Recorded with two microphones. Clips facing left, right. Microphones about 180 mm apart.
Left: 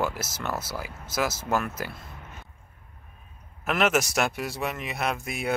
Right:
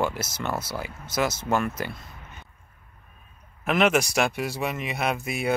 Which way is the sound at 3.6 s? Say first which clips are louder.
Right 2 dB; centre (ahead or behind).